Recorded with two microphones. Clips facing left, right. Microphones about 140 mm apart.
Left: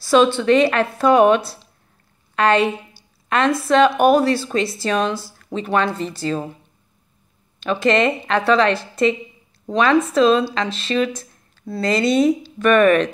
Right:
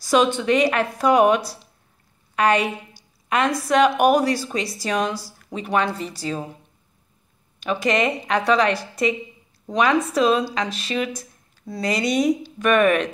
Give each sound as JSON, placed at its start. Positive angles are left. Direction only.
{"t": 0.0, "sound": "a woman's voice", "side_deg": -15}
{"t": 7.6, "sound": "speech", "side_deg": -10}